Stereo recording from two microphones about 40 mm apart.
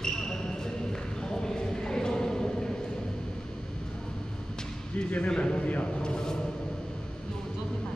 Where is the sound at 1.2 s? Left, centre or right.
Centre.